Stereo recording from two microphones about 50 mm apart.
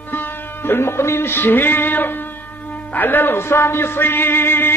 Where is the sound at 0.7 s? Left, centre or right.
Left.